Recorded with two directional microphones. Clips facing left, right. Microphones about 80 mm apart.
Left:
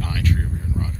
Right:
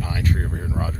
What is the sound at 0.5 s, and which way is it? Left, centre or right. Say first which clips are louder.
Speech: right 2 dB; right.